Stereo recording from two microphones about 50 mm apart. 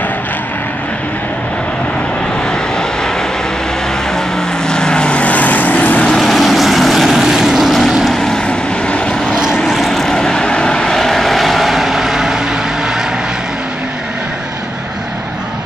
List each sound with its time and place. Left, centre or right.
4.6 s vehicle: centre; by 6.0 s left
6.1 s vehicle: centre
8.1 s vehicle: centre
9.7 s vehicle: centre